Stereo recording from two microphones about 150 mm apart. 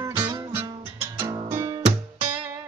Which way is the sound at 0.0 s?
25° right (ahead or behind).